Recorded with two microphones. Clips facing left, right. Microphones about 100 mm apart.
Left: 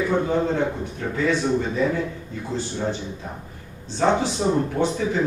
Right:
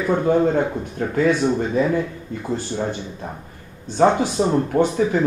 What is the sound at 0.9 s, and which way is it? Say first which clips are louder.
Speech: right 7 dB; 50° right (ahead or behind).